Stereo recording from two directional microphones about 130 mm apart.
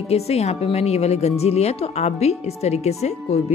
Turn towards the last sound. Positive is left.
turn(degrees=55)  # may be behind; listen again after turning